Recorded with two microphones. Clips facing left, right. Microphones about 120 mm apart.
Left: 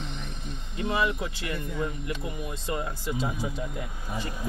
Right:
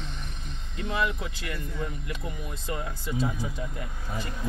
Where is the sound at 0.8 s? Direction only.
20° left (ahead or behind).